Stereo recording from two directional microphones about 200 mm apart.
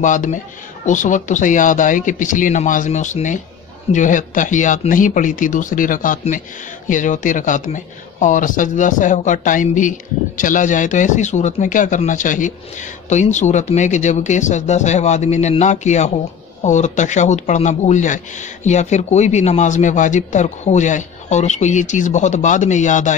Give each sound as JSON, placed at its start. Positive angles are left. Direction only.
{"t": 0.0, "sound": "speech", "side_deg": 40}